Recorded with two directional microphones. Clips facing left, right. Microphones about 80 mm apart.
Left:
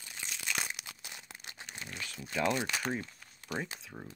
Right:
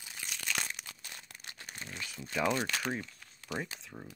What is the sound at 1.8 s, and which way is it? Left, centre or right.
Speech, centre.